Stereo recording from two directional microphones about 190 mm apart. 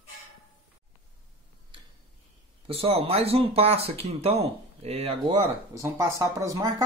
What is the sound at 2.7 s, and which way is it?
Speech, 30° right (ahead or behind).